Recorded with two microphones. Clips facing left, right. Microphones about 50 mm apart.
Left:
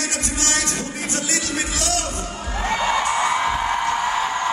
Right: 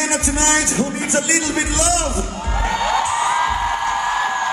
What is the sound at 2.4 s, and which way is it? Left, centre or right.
Music, right.